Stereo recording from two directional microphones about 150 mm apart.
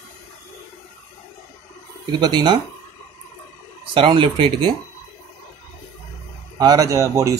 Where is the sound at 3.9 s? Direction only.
35° right (ahead or behind).